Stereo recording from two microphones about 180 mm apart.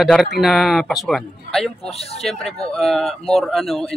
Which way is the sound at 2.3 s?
Centre (ahead or behind).